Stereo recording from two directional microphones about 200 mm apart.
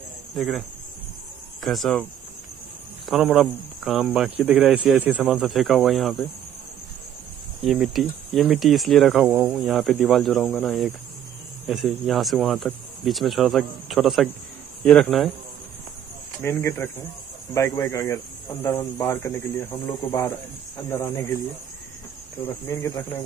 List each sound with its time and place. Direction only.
0.3 s speech: centre (ahead or behind)
3.1 s speech: centre (ahead or behind)
7.6 s speech: centre (ahead or behind)
16.4 s speech: 10° left (ahead or behind)
22.7 s speech: 15° left (ahead or behind)